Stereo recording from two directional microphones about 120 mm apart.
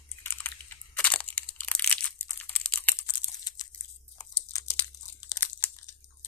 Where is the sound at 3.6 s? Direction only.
35° left (ahead or behind).